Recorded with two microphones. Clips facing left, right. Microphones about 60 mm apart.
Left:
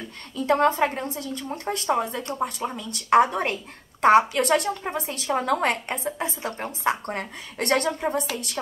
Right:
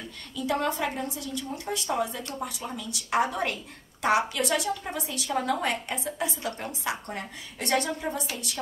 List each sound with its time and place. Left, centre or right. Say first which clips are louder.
0.4 s a woman's voice: left 7 dB; left